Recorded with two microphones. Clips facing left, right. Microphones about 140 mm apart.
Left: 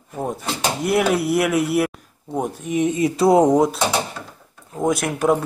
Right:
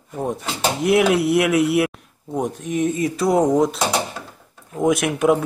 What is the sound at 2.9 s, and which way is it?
Speech, 25° left (ahead or behind).